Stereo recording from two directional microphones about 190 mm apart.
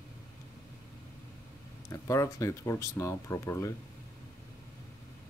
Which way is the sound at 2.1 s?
15° left (ahead or behind).